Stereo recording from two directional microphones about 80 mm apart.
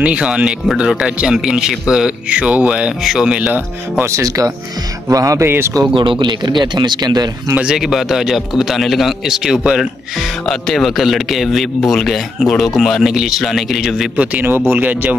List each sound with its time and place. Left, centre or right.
0.0 s a man's voice: centre
3.0 s a man's voice: centre
4.0 s speech: right
5.4 s speech: right
5.9 s a man's voice: right
7.5 s a man's voice: centre
10.5 s a man's voice: centre
14.1 s speech: right